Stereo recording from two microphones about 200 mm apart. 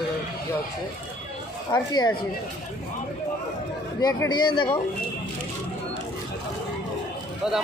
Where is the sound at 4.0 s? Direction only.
20° left (ahead or behind).